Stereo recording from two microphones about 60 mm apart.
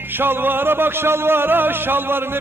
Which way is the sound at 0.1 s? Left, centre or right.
Right.